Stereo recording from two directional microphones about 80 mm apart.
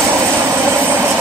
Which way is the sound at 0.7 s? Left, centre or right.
Right.